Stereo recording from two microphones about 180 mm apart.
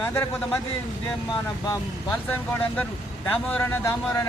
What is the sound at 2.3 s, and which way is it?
A man's voice, 10° left (ahead or behind).